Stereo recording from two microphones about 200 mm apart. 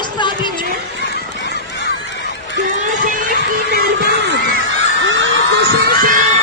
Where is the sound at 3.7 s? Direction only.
55° right (ahead or behind).